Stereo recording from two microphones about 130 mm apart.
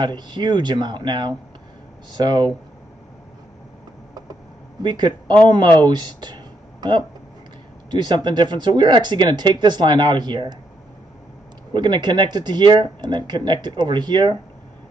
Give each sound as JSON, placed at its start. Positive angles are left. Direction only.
{"t": 0.0, "sound": "speech", "side_deg": -35}
{"t": 4.8, "sound": "speech", "side_deg": -35}
{"t": 11.7, "sound": "speech", "side_deg": -35}